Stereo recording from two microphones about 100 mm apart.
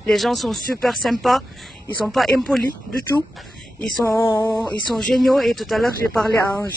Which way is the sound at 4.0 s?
30° left (ahead or behind).